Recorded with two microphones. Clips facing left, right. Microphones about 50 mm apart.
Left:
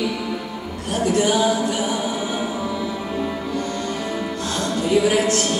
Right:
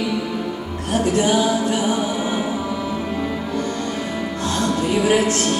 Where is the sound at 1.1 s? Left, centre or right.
Right.